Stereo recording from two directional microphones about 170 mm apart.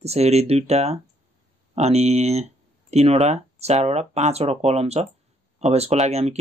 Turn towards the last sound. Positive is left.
turn(degrees=-40)  # may be behind; listen again after turning